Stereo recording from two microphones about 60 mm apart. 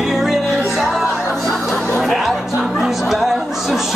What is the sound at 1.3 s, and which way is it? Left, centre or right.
Speech, centre.